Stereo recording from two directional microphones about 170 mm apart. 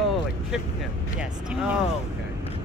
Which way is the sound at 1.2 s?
5° right (ahead or behind).